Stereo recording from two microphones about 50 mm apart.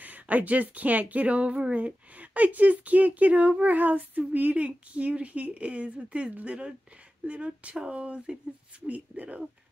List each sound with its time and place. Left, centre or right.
0.0 s speech: right